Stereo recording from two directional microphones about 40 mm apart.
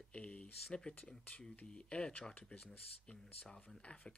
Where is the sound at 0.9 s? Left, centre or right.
Left.